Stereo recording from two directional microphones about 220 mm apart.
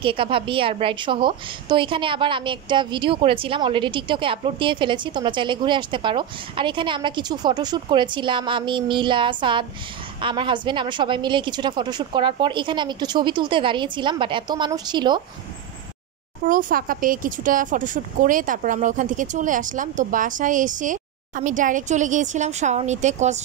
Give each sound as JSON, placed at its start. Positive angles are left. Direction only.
{"t": 0.0, "sound": "a woman's voice", "side_deg": -25}
{"t": 16.4, "sound": "speech", "side_deg": -35}